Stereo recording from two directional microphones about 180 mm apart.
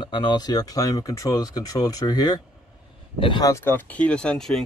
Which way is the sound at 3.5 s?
10° left (ahead or behind).